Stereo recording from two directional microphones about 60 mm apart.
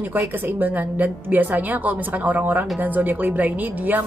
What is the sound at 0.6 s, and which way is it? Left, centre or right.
A woman's voice, right.